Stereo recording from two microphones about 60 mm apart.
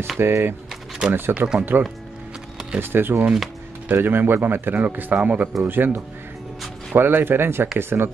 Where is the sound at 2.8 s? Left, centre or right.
Right.